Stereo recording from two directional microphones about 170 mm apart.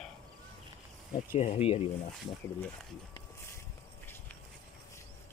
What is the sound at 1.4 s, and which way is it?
Speech, 40° left (ahead or behind).